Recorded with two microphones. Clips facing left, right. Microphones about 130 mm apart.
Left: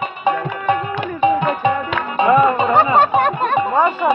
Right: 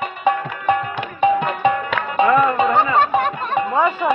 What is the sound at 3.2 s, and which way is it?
Music, 60° left (ahead or behind).